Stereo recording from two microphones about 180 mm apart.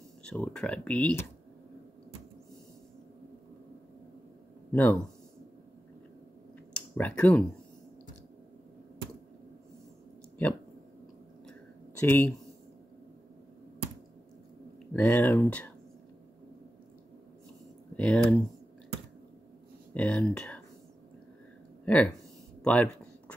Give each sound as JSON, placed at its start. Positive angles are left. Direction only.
{"t": 0.2, "sound": "speech", "side_deg": 5}
{"t": 4.7, "sound": "speech", "side_deg": 5}
{"t": 6.7, "sound": "a sound", "side_deg": 10}
{"t": 12.0, "sound": "speech", "side_deg": 15}
{"t": 15.0, "sound": "speech", "side_deg": 10}
{"t": 17.9, "sound": "speech", "side_deg": 5}
{"t": 19.9, "sound": "speech", "side_deg": 5}
{"t": 21.8, "sound": "speech", "side_deg": 10}
{"t": 22.6, "sound": "a sound", "side_deg": 5}